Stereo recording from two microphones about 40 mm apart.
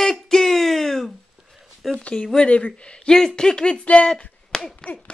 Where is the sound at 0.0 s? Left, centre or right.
Centre.